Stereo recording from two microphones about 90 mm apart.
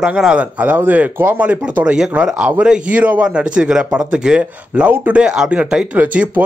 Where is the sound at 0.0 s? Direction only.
10° right (ahead or behind).